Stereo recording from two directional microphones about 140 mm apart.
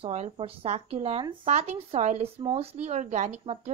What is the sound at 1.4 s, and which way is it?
Speech, 55° right (ahead or behind).